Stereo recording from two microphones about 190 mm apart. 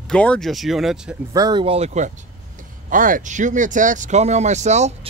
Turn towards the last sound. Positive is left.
turn(degrees=-35)  # may be behind; listen again after turning